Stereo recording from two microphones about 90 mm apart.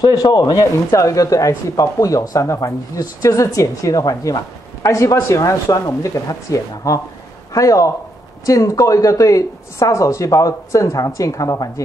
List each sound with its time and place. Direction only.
0.0 s speech: 45° left (ahead or behind)